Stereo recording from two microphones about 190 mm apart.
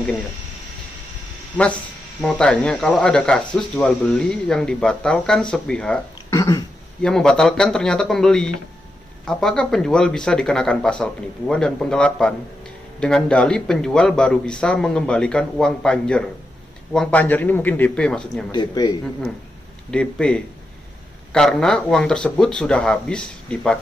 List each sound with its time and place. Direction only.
2.2 s speech: 5° left (ahead or behind)
6.3 s throat clearing: 15° left (ahead or behind)
7.0 s a man's voice: 5° left (ahead or behind)
18.5 s speech: 20° left (ahead or behind)
19.9 s speech: 5° left (ahead or behind)